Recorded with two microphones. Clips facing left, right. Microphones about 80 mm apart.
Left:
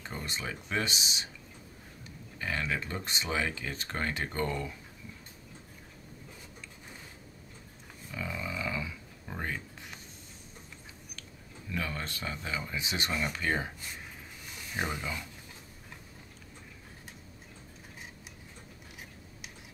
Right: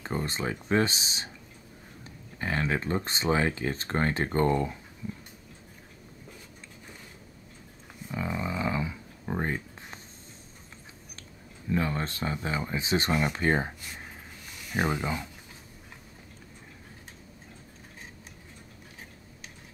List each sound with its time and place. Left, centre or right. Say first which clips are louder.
0.0 s speech: right 7 dB; right
2.3 s speech: right 5 dB; right
8.1 s a sound: right 5 dB; right
11.7 s speech: right 7 dB; right